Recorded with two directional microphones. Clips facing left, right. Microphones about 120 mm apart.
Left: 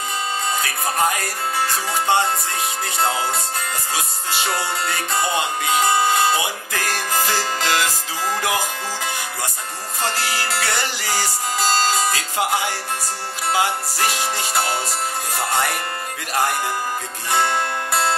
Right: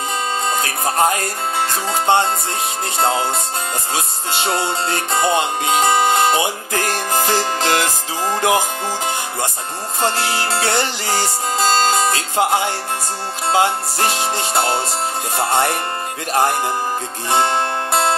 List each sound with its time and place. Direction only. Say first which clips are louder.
0.6 s music: right 4 dB; 30° right (ahead or behind)